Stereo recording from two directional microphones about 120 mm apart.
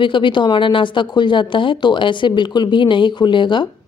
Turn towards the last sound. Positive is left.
turn(degrees=40)  # may be behind; listen again after turning